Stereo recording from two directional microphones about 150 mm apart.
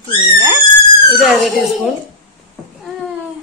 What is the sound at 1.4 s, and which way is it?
Speech, centre (ahead or behind).